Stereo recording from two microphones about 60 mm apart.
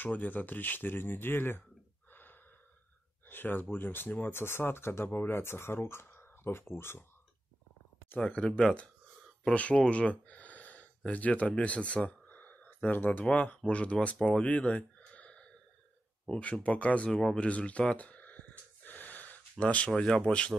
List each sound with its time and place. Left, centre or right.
0.0 s speech: left
3.3 s speech: left
8.3 s speech: centre
14.2 s a sound: centre
16.3 s speech: centre
17.5 s gasp: left
19.6 s speech: left